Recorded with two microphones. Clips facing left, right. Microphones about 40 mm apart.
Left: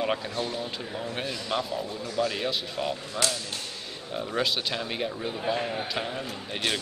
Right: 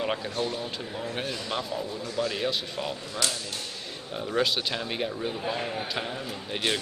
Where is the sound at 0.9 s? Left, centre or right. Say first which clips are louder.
Even; centre.